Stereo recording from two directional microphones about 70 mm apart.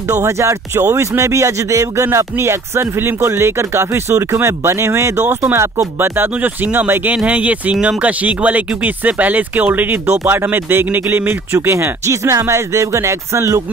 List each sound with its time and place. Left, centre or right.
0.1 s speech: right
5.9 s speech: right